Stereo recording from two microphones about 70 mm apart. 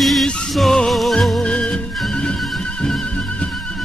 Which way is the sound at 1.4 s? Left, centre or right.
Centre.